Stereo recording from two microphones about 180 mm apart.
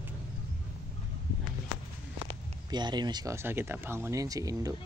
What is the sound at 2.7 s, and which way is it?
Speech, 25° right (ahead or behind).